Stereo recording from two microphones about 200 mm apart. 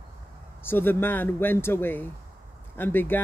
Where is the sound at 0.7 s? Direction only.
10° left (ahead or behind).